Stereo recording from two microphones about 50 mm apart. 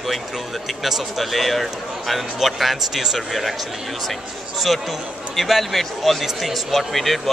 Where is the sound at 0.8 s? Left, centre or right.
Centre.